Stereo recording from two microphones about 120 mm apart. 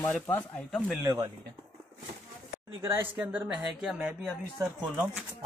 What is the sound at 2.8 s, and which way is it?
Speech, 20° right (ahead or behind).